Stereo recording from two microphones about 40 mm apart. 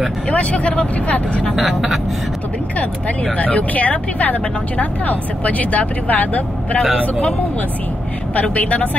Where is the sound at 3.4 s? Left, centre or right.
Left.